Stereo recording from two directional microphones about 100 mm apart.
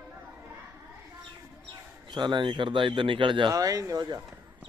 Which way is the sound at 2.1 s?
50° right (ahead or behind).